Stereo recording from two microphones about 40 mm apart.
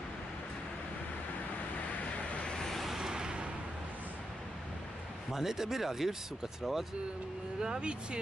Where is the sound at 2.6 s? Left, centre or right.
Centre.